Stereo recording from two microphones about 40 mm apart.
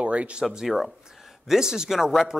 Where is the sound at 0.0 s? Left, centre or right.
Right.